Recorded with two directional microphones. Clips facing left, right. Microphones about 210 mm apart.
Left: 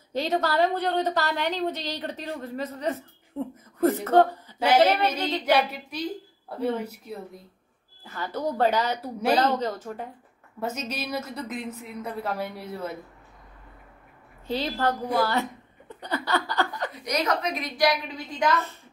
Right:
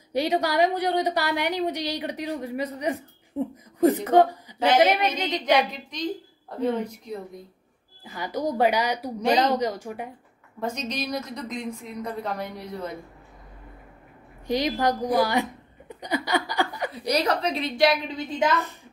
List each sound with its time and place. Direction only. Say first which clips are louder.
0.1 s a woman's voice: right 2 dB; 15° right (ahead or behind)
5.7 s a woman's voice: right 1 dB; 10° left (ahead or behind)
8.0 s a woman's voice: right 2 dB; 15° right (ahead or behind)
10.6 s a woman's voice: right 2 dB; 5° left (ahead or behind)
14.5 s a woman's voice: right 3 dB; 15° right (ahead or behind)
16.9 s a woman's voice: right 4 dB; 35° right (ahead or behind)